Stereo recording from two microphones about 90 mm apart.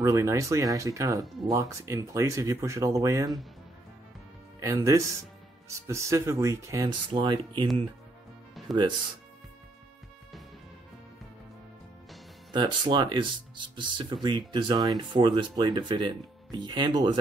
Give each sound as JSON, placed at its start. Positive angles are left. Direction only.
{"t": 0.0, "sound": "speech", "side_deg": -35}
{"t": 4.6, "sound": "speech", "side_deg": -35}
{"t": 6.9, "sound": "speech", "side_deg": -60}
{"t": 8.6, "sound": "music", "side_deg": 0}
{"t": 12.5, "sound": "speech", "side_deg": -60}